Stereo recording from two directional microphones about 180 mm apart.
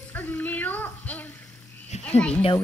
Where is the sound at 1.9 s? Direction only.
40° left (ahead or behind).